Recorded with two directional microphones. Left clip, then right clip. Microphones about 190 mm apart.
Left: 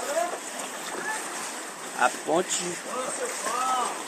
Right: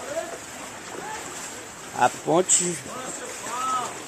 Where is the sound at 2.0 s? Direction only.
45° right (ahead or behind).